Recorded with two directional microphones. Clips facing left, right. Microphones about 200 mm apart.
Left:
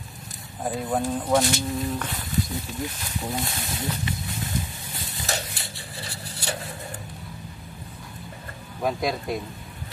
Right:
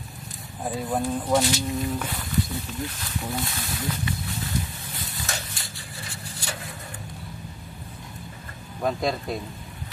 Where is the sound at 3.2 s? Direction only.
20° left (ahead or behind).